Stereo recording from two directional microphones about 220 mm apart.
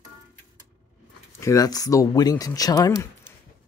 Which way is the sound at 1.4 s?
15° left (ahead or behind).